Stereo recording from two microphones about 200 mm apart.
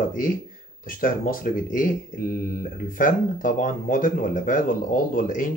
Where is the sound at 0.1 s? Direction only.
45° left (ahead or behind).